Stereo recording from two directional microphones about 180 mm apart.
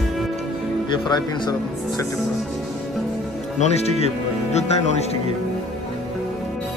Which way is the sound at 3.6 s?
35° left (ahead or behind).